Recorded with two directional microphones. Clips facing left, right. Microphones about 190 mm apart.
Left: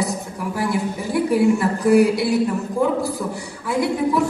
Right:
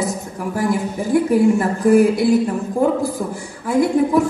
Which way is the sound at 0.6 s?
45° right (ahead or behind).